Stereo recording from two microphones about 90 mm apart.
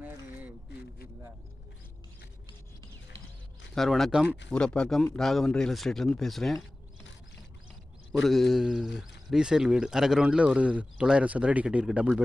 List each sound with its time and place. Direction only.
0.0 s a sound: 20° right (ahead or behind)
3.7 s speech: centre (ahead or behind)
8.1 s a man's voice: centre (ahead or behind)